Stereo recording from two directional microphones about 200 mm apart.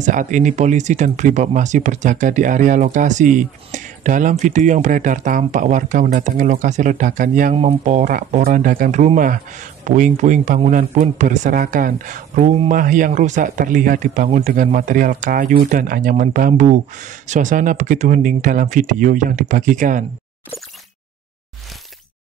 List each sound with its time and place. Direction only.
0.0 s speech: 40° right (ahead or behind)